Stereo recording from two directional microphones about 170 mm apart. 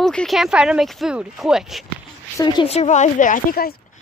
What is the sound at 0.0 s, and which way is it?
Speech, 5° left (ahead or behind).